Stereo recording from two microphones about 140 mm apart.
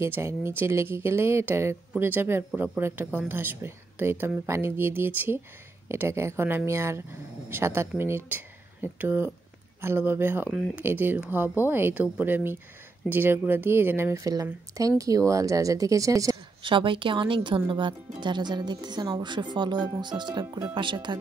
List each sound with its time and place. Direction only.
0.0 s speech: 20° right (ahead or behind)
16.6 s speech: 35° right (ahead or behind)